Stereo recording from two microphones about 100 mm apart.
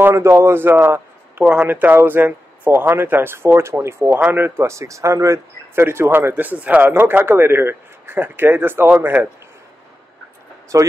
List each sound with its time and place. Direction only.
0.0 s a man's voice: 25° right (ahead or behind)
10.7 s speech: 30° right (ahead or behind)